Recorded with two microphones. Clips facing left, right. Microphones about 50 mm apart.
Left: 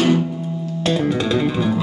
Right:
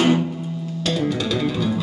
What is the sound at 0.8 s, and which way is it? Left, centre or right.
Music, left.